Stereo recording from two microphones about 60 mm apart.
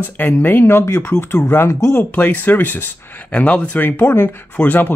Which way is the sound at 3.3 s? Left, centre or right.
Centre.